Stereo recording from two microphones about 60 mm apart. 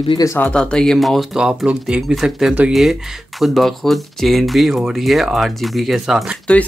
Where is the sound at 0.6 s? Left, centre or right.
Centre.